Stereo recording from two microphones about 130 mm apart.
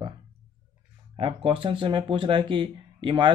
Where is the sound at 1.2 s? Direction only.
45° right (ahead or behind).